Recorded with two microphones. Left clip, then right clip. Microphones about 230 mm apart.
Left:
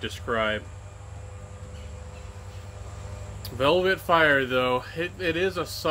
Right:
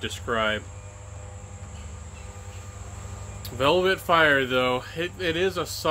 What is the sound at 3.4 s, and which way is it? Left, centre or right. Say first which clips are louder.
Speech: right 1 dB; centre.